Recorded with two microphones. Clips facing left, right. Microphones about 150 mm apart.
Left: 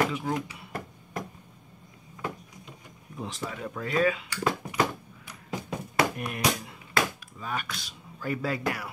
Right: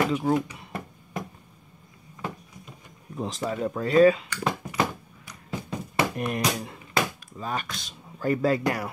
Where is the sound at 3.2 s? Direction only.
35° right (ahead or behind).